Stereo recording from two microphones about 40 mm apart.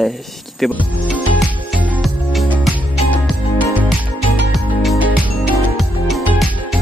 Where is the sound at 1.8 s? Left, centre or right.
Right.